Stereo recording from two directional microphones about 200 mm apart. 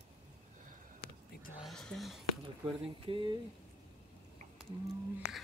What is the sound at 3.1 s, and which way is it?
Speech, 25° right (ahead or behind).